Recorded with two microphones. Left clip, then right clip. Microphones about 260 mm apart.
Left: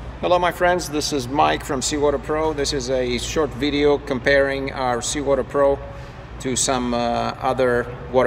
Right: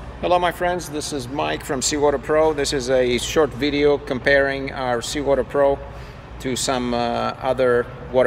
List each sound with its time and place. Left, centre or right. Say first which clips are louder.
0.2 s speech: left 1 dB; centre